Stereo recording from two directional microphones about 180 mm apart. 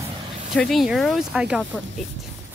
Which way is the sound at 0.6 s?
Centre (ahead or behind).